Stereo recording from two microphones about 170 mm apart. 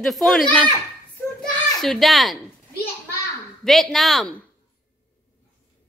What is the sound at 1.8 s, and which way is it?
Speech, centre (ahead or behind).